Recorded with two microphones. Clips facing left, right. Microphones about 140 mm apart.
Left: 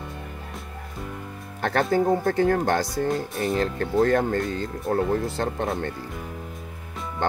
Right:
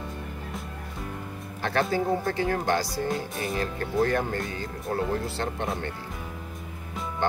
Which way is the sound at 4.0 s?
50° left (ahead or behind).